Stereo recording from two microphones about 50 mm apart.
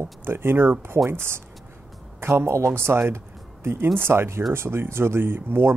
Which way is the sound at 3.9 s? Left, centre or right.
Right.